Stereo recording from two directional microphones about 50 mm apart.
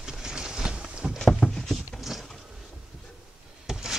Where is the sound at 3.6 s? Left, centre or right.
Centre.